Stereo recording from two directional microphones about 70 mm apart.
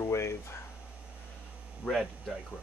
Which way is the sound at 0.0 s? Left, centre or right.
Left.